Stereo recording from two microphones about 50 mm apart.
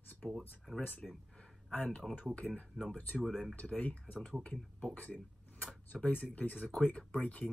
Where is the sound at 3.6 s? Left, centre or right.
Left.